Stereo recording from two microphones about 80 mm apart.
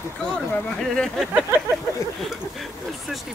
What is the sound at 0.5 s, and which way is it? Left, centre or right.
Speech, centre.